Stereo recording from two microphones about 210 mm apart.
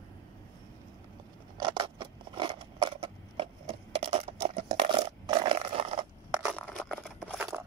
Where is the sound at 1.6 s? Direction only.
20° right (ahead or behind).